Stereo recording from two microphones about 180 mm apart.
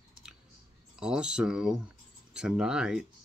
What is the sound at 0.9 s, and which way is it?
Speech, 5° right (ahead or behind).